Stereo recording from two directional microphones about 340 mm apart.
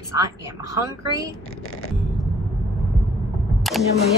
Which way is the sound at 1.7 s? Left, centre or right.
Left.